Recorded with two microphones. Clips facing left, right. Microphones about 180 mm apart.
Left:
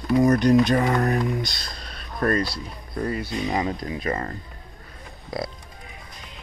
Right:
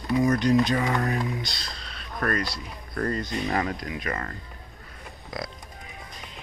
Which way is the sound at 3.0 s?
10° left (ahead or behind).